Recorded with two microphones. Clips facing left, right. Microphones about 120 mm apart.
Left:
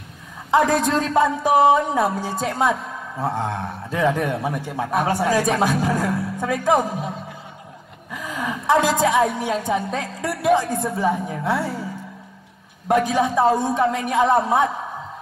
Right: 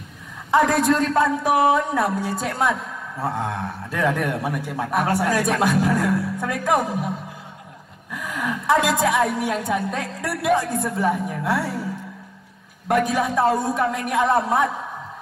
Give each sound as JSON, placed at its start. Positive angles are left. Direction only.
{"t": 0.5, "sound": "a woman's voice", "side_deg": 0}
{"t": 1.4, "sound": "a woman's voice", "side_deg": 25}
{"t": 2.0, "sound": "a woman's voice", "side_deg": 0}
{"t": 8.2, "sound": "a woman's voice", "side_deg": 0}
{"t": 12.8, "sound": "a woman's voice", "side_deg": 0}